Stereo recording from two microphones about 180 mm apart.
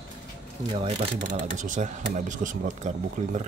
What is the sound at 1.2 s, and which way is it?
Speech, 45° right (ahead or behind).